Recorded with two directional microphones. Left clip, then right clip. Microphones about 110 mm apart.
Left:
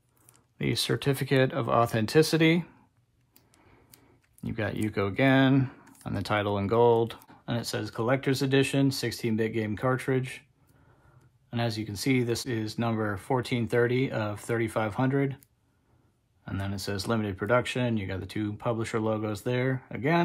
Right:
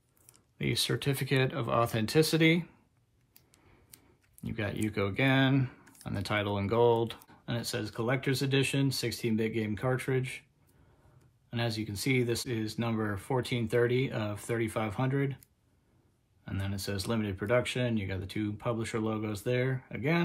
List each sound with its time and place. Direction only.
0.6 s speech: 40° left (ahead or behind)
4.4 s speech: 40° left (ahead or behind)
11.5 s speech: 40° left (ahead or behind)
16.4 s speech: 40° left (ahead or behind)